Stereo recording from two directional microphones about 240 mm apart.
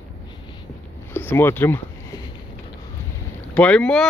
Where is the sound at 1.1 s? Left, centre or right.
Centre.